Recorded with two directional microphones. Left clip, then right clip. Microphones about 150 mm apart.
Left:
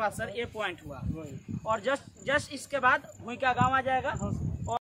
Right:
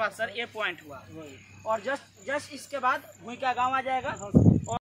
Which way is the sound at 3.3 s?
50° right (ahead or behind).